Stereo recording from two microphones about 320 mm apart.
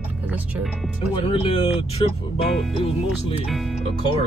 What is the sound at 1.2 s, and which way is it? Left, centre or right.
Speech, centre.